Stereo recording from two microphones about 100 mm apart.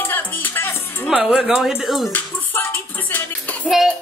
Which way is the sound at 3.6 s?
5° right (ahead or behind).